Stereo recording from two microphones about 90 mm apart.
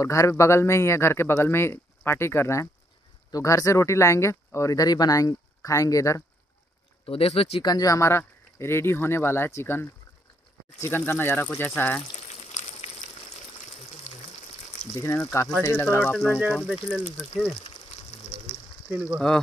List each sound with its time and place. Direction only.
0.0 s speech: 35° left (ahead or behind)
7.1 s speech: 90° left
7.6 s speech: 45° left (ahead or behind); by 12.0 s 20° left (ahead or behind)
15.1 s speech: 20° left (ahead or behind)
16.0 s speech: 10° left (ahead or behind)
16.6 s speech: 5° right (ahead or behind)
18.9 s speech: 15° right (ahead or behind)
19.1 s speech: 5° left (ahead or behind)